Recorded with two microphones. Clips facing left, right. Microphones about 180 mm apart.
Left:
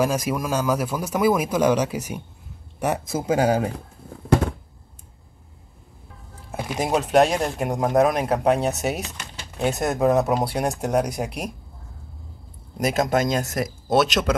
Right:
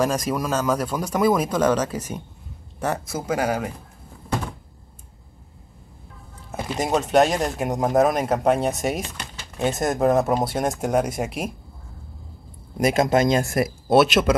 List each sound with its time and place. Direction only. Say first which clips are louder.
0.0 s speech: even; 5° left (ahead or behind); by 3.7 s 30° left (ahead or behind)
6.5 s speech: even; 10° left (ahead or behind)
12.7 s speech: right 2 dB; 10° right (ahead or behind)